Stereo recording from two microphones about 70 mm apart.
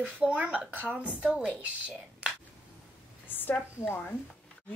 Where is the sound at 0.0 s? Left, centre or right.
Right.